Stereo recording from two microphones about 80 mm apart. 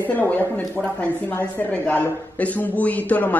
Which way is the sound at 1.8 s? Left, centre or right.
Centre.